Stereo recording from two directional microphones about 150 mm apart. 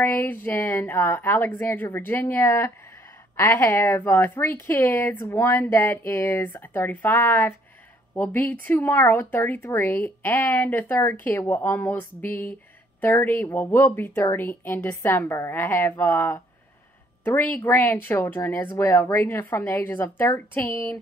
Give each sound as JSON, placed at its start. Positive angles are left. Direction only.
{"t": 0.0, "sound": "a woman's voice", "side_deg": 15}